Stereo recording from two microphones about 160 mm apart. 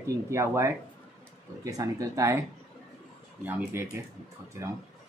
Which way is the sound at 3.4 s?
10° right (ahead or behind).